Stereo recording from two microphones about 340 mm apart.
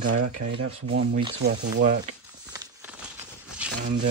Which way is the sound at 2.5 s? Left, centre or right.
Centre.